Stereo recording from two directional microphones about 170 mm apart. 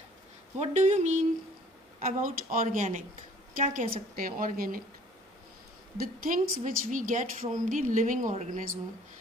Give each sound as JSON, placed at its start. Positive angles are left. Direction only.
{"t": 0.6, "sound": "a woman's voice", "side_deg": -45}
{"t": 5.9, "sound": "a woman's voice", "side_deg": -55}